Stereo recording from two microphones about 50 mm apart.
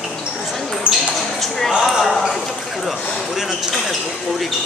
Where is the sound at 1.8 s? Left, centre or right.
Centre.